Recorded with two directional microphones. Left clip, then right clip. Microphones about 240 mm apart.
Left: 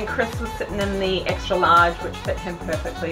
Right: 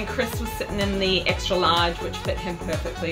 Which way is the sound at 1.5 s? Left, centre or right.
Centre.